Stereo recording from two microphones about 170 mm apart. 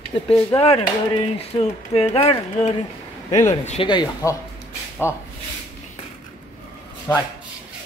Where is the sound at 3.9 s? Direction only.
20° left (ahead or behind).